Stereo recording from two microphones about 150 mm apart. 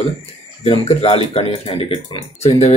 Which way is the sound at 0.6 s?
40° left (ahead or behind).